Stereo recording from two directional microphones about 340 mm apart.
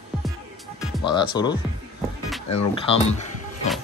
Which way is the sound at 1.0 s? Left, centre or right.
Centre.